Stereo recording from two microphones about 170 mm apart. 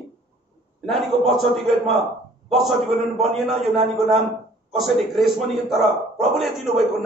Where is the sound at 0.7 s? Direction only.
Centre (ahead or behind).